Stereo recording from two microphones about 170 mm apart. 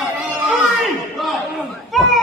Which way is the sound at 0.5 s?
Centre (ahead or behind).